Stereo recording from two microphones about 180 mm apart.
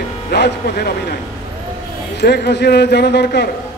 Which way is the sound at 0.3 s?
60° left (ahead or behind).